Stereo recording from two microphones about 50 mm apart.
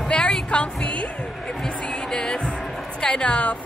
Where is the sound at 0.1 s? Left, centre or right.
Centre.